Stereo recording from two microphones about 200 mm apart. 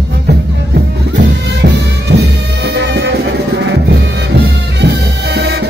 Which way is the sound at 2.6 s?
60° right (ahead or behind).